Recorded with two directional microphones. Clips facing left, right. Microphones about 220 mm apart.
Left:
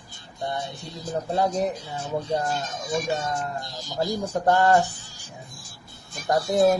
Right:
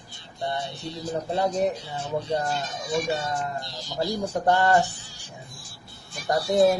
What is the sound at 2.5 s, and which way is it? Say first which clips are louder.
Speech: even; 45° left (ahead or behind).